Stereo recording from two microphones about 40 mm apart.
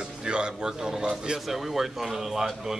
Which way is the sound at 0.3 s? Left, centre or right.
Right.